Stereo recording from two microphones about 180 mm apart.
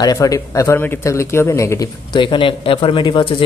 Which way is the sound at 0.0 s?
20° left (ahead or behind).